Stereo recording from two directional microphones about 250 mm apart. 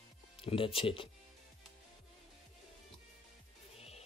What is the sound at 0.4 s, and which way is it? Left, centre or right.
Speech, left.